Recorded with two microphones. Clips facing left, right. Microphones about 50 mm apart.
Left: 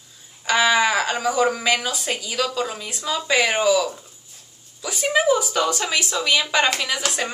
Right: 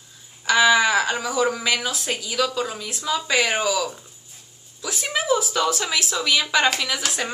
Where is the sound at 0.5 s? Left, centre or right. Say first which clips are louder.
Right 1 dB; centre.